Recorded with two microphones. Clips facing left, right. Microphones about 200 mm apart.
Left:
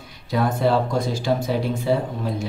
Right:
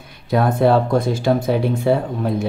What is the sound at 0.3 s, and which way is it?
Speech, 55° right (ahead or behind).